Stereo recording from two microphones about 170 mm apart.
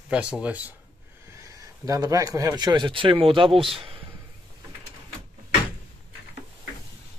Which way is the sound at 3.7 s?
30° right (ahead or behind).